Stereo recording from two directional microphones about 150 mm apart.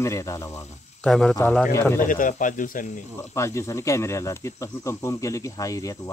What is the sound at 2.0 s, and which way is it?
Speech, 60° left (ahead or behind).